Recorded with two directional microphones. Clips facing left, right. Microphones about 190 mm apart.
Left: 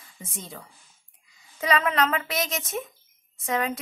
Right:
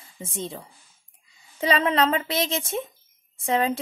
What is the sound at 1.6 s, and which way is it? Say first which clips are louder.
Speech: right 2 dB; 30° right (ahead or behind).